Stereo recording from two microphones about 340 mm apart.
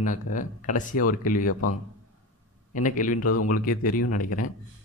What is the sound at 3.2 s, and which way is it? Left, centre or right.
Speech, left.